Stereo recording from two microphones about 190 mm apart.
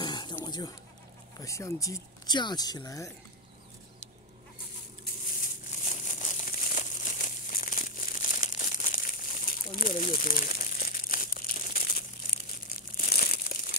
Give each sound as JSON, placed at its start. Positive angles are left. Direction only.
{"t": 0.0, "sound": "a sound", "side_deg": 25}
{"t": 1.4, "sound": "speech", "side_deg": 15}
{"t": 5.7, "sound": "crumpling", "side_deg": 40}